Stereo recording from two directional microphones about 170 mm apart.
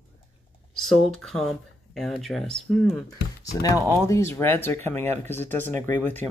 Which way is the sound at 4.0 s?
15° left (ahead or behind).